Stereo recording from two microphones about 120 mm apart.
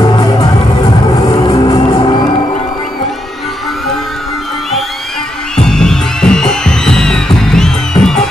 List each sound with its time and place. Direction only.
0.0 s music: 35° left (ahead or behind)
5.6 s music: 5° left (ahead or behind)